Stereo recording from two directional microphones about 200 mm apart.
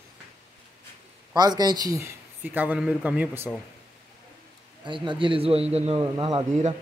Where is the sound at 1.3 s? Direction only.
20° right (ahead or behind).